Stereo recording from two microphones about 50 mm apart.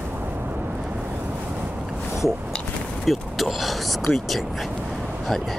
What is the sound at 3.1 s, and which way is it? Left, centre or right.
Speech, centre.